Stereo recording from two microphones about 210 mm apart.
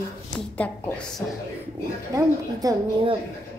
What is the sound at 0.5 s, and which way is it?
Speech, 5° left (ahead or behind).